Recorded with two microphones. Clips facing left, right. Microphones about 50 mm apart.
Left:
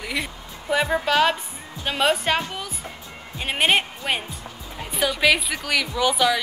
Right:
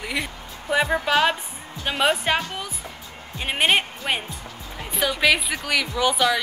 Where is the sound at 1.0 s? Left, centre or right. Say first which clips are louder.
Even; centre.